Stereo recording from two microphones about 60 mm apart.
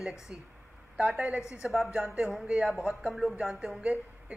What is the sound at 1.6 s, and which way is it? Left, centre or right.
A woman's voice, right.